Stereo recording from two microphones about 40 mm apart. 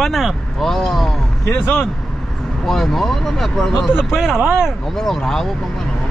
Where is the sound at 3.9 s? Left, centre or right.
Centre.